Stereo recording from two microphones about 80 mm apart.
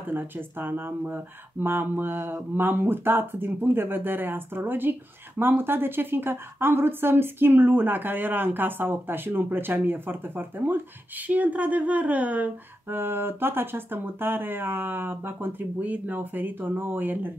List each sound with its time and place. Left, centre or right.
0.1 s a woman's voice: right